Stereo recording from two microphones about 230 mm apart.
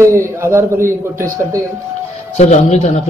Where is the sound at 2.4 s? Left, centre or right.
Left.